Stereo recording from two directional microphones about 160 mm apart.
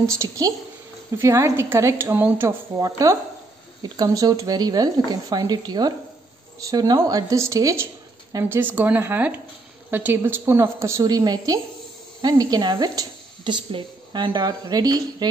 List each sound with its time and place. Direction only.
0.2 s a woman's voice: 20° right (ahead or behind)